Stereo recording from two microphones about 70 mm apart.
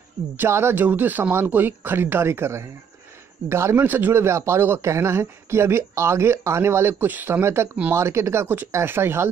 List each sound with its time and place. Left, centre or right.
0.4 s speech: right
0.8 s speech: right